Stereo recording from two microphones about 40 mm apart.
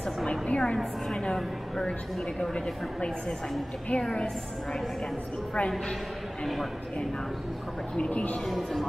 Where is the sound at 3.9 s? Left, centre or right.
Left.